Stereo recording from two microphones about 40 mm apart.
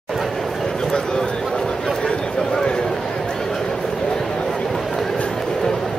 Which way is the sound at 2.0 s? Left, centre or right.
Centre.